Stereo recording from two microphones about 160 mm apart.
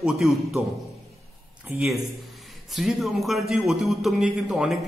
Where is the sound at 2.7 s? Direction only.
Centre (ahead or behind).